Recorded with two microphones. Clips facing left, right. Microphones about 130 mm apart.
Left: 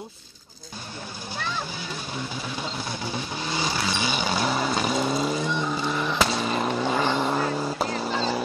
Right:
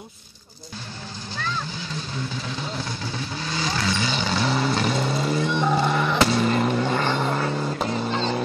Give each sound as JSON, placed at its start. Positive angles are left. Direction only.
{"t": 3.4, "sound": "vehicle", "side_deg": 15}
{"t": 5.5, "sound": "a sound", "side_deg": -65}
{"t": 6.4, "sound": "vehicle", "side_deg": 0}